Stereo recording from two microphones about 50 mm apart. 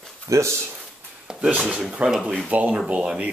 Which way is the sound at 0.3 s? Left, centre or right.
Right.